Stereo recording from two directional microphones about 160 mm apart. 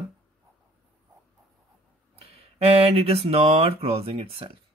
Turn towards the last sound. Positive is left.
turn(degrees=-35)  # may be behind; listen again after turning